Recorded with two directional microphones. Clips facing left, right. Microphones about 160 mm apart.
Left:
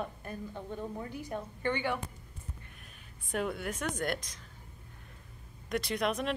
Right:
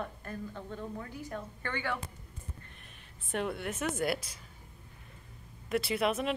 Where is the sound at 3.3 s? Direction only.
Centre (ahead or behind).